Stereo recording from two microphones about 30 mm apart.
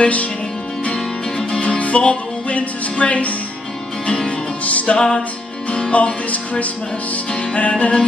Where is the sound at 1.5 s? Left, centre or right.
Left.